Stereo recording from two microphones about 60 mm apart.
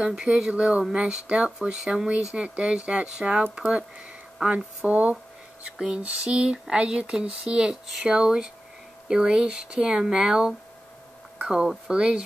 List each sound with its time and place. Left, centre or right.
0.0 s speech: centre
5.8 s a sound: centre
6.0 s speech: centre